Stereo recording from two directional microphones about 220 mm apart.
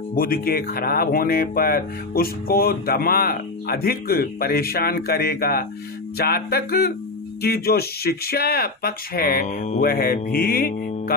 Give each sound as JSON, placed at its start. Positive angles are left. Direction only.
{"t": 0.1, "sound": "speech", "side_deg": 40}